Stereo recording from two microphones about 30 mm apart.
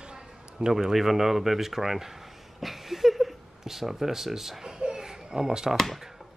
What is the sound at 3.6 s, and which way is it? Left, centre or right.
Speech, centre.